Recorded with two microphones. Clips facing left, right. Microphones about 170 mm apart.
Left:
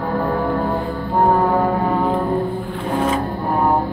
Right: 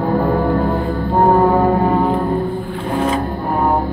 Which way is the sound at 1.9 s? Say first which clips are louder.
Right 2 dB; 10° right (ahead or behind).